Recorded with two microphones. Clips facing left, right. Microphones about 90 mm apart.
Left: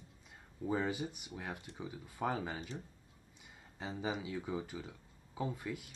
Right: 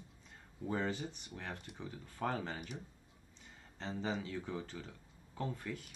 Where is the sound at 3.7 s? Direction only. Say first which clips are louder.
Even; 10° left (ahead or behind).